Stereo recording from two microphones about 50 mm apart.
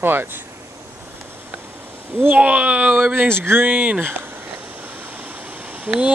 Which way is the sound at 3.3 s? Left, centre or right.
Right.